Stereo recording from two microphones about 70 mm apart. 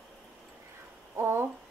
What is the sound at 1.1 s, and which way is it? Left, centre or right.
Speech, right.